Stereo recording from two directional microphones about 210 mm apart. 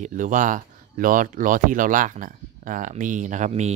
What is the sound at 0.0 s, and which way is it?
Speech, 35° right (ahead or behind).